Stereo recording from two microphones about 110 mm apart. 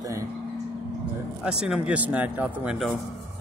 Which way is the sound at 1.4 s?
5° right (ahead or behind).